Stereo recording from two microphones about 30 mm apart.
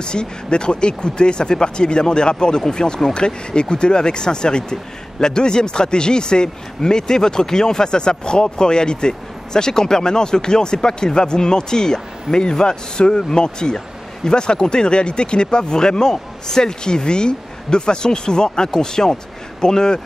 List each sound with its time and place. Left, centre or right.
0.0 s speech: left